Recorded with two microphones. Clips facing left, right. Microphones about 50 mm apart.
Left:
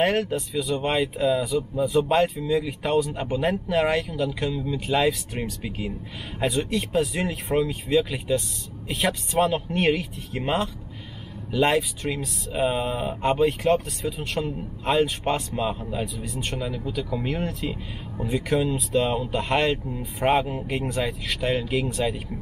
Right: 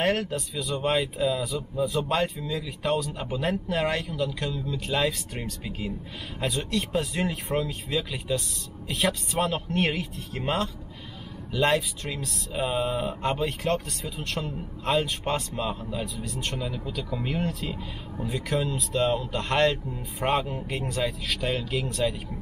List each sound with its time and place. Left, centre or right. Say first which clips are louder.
0.0 s speech: left 3 dB; centre
6.4 s speech: left 4 dB; centre
15.9 s speech: left 3 dB; centre
16.3 s speech: left 2 dB; centre